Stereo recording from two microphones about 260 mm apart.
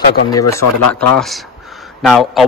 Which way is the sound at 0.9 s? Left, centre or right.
Centre.